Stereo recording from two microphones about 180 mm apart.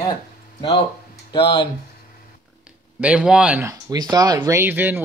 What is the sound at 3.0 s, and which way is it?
Speech, 5° right (ahead or behind).